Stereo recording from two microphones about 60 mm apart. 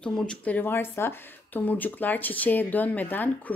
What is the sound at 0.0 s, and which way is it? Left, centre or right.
Speech, centre.